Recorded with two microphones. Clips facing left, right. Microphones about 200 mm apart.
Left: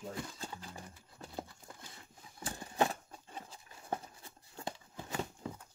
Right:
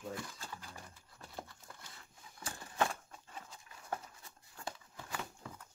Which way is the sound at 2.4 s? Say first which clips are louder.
Left 3 dB; 25° left (ahead or behind).